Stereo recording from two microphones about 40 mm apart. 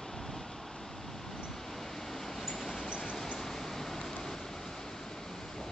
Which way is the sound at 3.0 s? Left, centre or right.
Centre.